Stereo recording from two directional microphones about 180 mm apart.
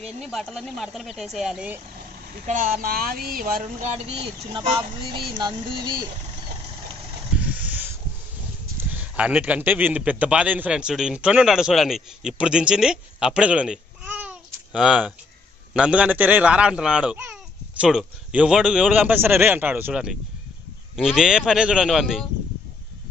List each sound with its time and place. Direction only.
0.2 s speech: centre (ahead or behind)
2.4 s speech: 50° right (ahead or behind); by 6.0 s 25° right (ahead or behind)
7.3 s a sound: 10° right (ahead or behind)
8.7 s a man's voice: 10° right (ahead or behind)